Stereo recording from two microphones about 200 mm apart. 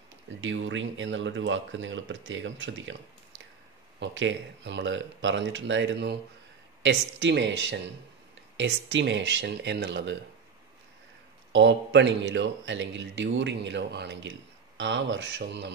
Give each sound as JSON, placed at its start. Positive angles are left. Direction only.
{"t": 0.4, "sound": "speech", "side_deg": -70}
{"t": 11.5, "sound": "speech", "side_deg": -65}